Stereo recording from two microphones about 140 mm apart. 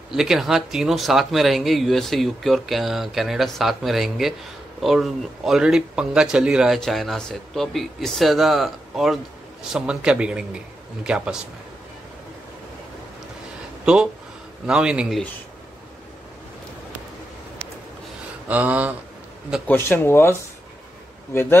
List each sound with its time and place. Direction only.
0.1 s speech: 5° right (ahead or behind)
14.7 s speech: 5° right (ahead or behind)
18.5 s speech: 10° right (ahead or behind)
19.7 s speech: 15° left (ahead or behind)